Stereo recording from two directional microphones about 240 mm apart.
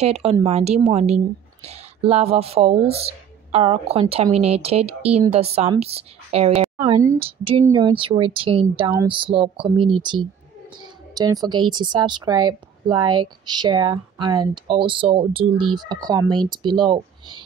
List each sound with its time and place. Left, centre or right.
0.0 s a woman's voice: right